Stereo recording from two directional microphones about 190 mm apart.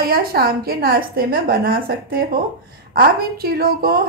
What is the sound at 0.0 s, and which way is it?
A woman's voice, 50° right (ahead or behind).